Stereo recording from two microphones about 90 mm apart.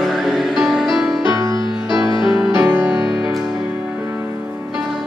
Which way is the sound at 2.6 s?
20° right (ahead or behind).